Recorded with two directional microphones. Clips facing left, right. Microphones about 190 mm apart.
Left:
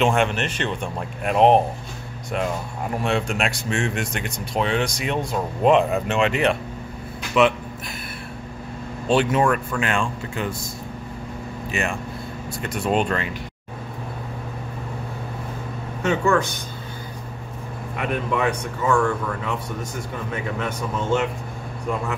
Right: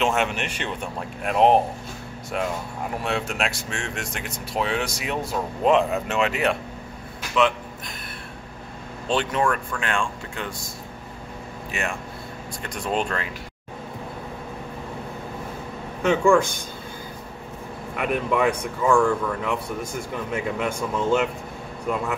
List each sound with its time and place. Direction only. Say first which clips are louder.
0.0 s speech: left 3 dB; 5° right (ahead or behind)
3.0 s speech: left 4 dB; centre (ahead or behind)
9.1 s speech: left 4 dB; 5° left (ahead or behind)
11.7 s speech: left 3 dB; centre (ahead or behind)
16.1 s speech: right 2 dB; 10° right (ahead or behind)
17.9 s speech: right 1 dB; 5° right (ahead or behind)